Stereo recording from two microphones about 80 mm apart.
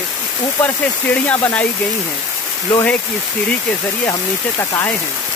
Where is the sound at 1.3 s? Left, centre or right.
Centre.